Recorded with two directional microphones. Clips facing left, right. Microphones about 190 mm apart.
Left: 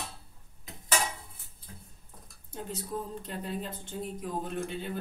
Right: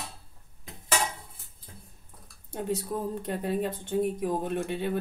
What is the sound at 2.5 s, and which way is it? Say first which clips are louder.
Speech: right 6 dB; 60° right (ahead or behind).